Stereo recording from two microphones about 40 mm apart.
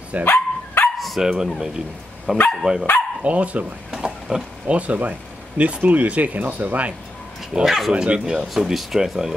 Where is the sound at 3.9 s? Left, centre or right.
Centre.